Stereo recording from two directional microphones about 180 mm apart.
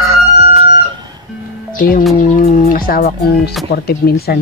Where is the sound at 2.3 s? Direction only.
50° left (ahead or behind).